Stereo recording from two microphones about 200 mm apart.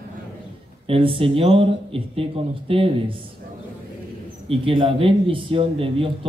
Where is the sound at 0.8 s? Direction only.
25° right (ahead or behind).